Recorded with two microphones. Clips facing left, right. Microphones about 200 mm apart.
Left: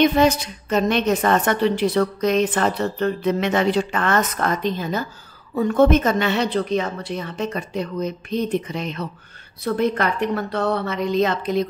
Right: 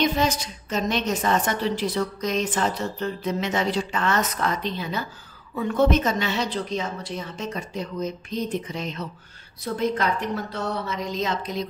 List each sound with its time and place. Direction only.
0.0 s a woman's voice: 60° left (ahead or behind)